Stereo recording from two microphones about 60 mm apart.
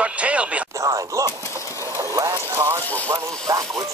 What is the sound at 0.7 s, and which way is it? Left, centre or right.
Speech, right.